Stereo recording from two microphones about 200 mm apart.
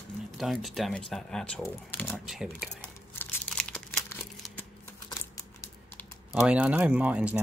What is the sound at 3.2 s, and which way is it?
Crumpling, 5° left (ahead or behind).